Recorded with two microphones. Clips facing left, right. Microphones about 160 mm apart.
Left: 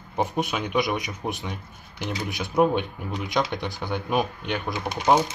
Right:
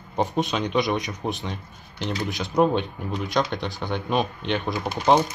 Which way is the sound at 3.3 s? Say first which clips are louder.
Right 1 dB; 20° right (ahead or behind).